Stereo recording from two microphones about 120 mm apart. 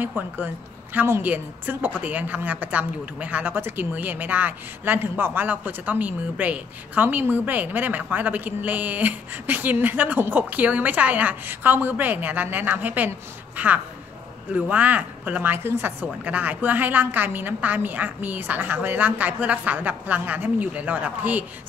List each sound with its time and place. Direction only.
0.0 s a woman's voice: 15° right (ahead or behind)
14.5 s a woman's voice: 15° right (ahead or behind)